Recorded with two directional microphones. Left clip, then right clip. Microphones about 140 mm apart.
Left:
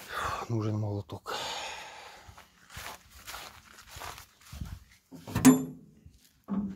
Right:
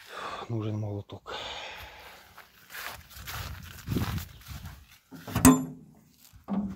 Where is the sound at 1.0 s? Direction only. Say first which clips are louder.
Left 2 dB; 55° left (ahead or behind).